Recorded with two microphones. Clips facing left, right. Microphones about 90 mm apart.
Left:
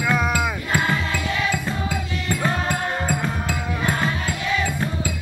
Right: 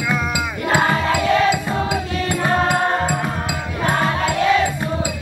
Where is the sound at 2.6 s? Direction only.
75° right (ahead or behind).